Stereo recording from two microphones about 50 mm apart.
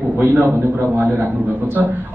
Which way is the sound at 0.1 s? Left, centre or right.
Right.